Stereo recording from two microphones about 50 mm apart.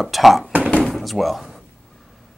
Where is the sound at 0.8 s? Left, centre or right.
Centre.